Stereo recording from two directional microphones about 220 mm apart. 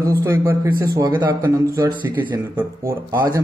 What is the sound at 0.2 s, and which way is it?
Speech, 10° right (ahead or behind).